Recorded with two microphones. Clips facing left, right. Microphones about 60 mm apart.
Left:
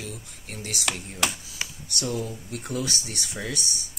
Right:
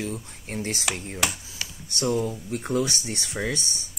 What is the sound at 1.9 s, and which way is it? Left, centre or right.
Speech, right.